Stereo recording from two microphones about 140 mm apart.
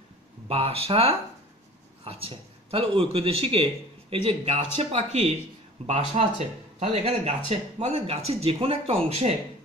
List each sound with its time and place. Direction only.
0.5 s a man's voice: 45° right (ahead or behind)